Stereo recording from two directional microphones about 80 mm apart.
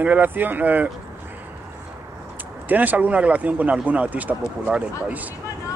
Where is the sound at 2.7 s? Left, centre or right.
Right.